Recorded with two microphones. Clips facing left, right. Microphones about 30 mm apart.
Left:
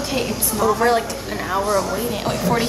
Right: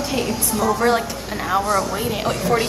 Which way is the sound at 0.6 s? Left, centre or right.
Centre.